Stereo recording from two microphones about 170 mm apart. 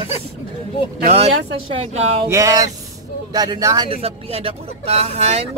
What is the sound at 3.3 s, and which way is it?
Speech, 20° right (ahead or behind).